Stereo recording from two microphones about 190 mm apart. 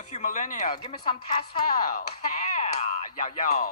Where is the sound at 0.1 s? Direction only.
40° left (ahead or behind).